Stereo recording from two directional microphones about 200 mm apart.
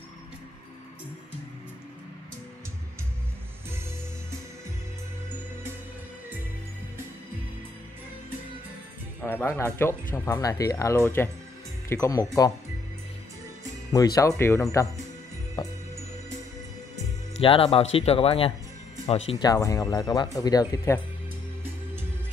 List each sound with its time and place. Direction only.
9.2 s speech: 10° left (ahead or behind)
13.9 s speech: 15° left (ahead or behind)
15.6 s music: 20° left (ahead or behind)
17.4 s speech: 25° left (ahead or behind)
19.4 s speech: 15° left (ahead or behind)